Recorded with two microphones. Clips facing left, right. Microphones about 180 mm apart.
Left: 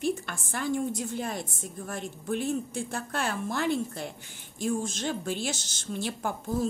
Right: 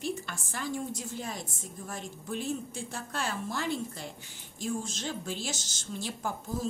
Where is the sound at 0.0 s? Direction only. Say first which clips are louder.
Left 5 dB; 55° left (ahead or behind).